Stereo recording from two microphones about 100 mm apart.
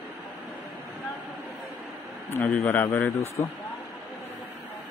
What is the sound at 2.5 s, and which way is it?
A man's voice, 20° left (ahead or behind).